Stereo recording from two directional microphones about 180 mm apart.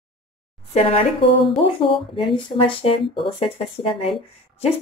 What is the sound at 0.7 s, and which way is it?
Speech, 35° left (ahead or behind).